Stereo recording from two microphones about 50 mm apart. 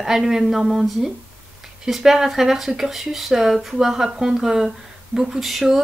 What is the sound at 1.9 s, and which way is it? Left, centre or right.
Speech, centre.